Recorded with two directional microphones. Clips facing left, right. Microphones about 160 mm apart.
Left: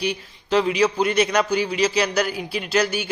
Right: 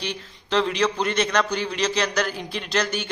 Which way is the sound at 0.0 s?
10° left (ahead or behind).